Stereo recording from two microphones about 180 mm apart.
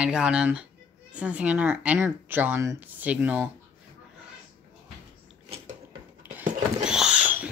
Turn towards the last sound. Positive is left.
turn(degrees=-5)  # may be behind; listen again after turning